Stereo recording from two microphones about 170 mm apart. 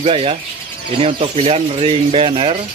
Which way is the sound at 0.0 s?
35° right (ahead or behind).